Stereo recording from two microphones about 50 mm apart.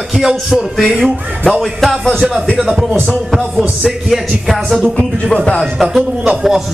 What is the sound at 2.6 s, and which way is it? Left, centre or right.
A man's voice, centre.